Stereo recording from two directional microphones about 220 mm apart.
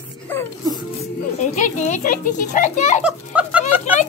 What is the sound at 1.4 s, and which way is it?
A child's voice, 35° left (ahead or behind).